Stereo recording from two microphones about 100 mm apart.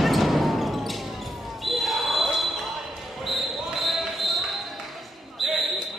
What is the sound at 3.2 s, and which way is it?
Basketball bounce, centre (ahead or behind).